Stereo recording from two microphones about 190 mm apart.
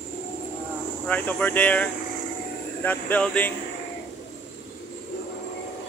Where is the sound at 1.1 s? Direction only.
10° left (ahead or behind).